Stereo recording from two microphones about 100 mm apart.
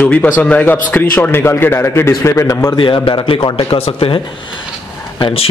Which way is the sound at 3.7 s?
70° left (ahead or behind).